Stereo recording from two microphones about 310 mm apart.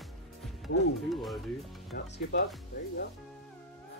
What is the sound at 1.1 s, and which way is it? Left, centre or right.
Speech, centre.